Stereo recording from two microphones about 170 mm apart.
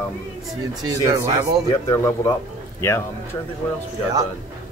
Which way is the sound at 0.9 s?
20° right (ahead or behind).